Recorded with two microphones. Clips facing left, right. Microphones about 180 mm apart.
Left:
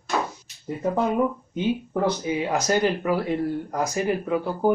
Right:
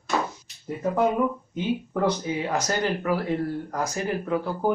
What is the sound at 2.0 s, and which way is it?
Speech, 10° left (ahead or behind).